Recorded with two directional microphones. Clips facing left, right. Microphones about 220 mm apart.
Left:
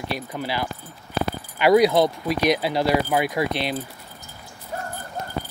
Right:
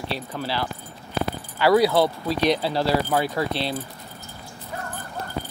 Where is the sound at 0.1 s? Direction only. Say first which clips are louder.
Left 1 dB; 15° left (ahead or behind).